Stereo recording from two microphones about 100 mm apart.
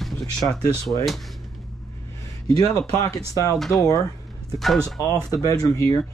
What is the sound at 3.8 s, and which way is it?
Speech, 35° left (ahead or behind).